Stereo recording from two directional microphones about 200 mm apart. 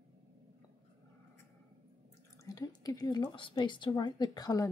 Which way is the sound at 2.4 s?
15° left (ahead or behind).